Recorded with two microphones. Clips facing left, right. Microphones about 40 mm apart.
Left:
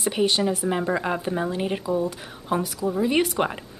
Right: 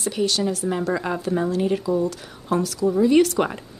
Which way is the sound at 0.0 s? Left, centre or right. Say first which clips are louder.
Left 1 dB; left.